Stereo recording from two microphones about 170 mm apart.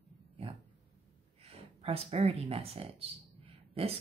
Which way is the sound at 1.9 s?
35° right (ahead or behind).